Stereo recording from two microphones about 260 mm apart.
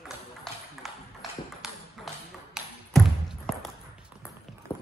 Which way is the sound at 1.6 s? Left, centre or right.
Centre.